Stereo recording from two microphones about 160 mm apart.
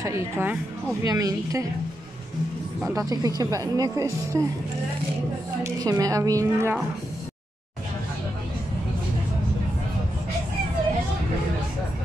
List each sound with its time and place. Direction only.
0.0 s a woman's voice: 15° right (ahead or behind)
2.9 s speech: 20° right (ahead or behind)
5.6 s speech: 20° right (ahead or behind)